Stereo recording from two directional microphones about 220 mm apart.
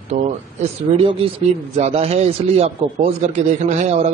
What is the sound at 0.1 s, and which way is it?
A man's voice, 30° right (ahead or behind).